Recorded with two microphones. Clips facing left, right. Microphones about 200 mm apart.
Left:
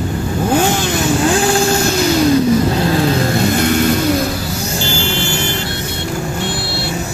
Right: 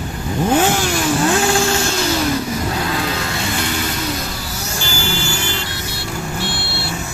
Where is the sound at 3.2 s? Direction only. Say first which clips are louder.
Left 8 dB; 45° left (ahead or behind).